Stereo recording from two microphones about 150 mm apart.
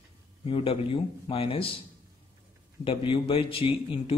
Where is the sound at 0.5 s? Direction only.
40° left (ahead or behind).